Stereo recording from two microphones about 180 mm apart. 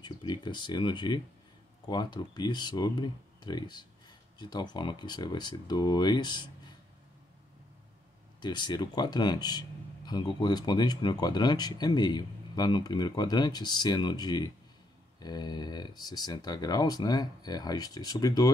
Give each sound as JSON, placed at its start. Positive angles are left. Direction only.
{"t": 0.0, "sound": "speech", "side_deg": 25}
{"t": 8.4, "sound": "speech", "side_deg": 25}